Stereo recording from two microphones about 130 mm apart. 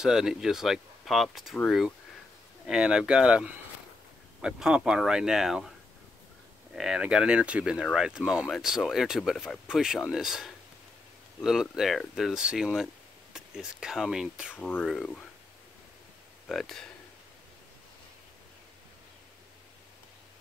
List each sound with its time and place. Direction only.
0.0 s speech: 5° right (ahead or behind)
6.7 s speech: 5° right (ahead or behind)
11.6 s speech: centre (ahead or behind)
14.9 s speech: 5° left (ahead or behind)
16.4 s speech: 5° left (ahead or behind)